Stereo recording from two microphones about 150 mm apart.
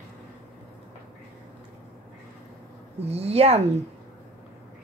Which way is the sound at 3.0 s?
45° right (ahead or behind).